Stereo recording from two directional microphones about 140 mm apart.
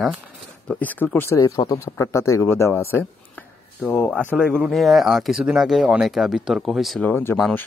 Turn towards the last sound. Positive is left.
turn(degrees=15)  # may be behind; listen again after turning